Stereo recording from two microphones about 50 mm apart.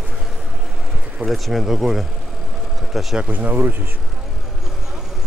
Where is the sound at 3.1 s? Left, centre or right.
Right.